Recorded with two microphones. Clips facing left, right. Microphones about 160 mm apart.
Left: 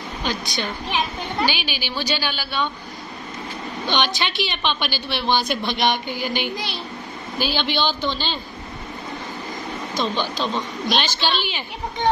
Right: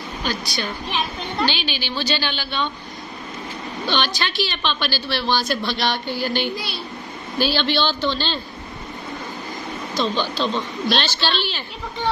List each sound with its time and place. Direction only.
0.2 s a woman's voice: 20° left (ahead or behind)
3.8 s a woman's voice: 20° left (ahead or behind)
10.1 s a woman's voice: 15° left (ahead or behind)